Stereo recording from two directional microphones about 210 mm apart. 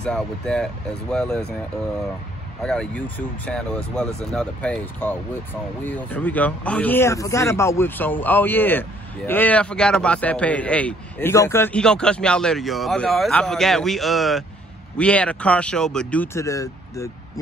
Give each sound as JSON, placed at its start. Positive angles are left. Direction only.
{"t": 0.0, "sound": "speech", "side_deg": 5}
{"t": 2.6, "sound": "speech", "side_deg": 5}